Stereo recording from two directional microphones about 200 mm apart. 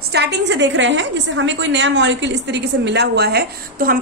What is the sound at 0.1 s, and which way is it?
A woman's voice, 60° right (ahead or behind).